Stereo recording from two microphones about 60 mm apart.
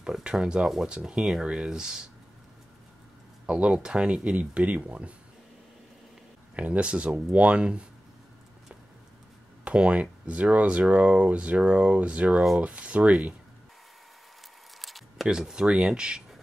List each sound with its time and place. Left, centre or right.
0.0 s speech: centre
3.4 s speech: right
6.5 s speech: right
9.7 s speech: right
14.8 s a sound: centre
15.2 s speech: centre